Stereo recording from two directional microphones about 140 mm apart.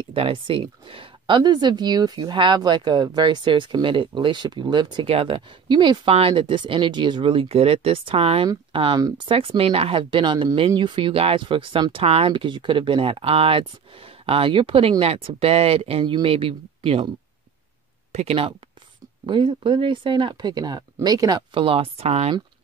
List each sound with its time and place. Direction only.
0.0 s speech: 40° right (ahead or behind)
18.1 s speech: 45° right (ahead or behind)
19.2 s speech: 35° right (ahead or behind)